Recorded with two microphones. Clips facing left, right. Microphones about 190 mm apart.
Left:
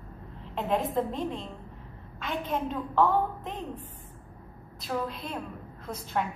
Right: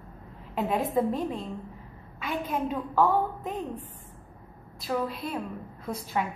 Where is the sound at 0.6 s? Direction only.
5° right (ahead or behind).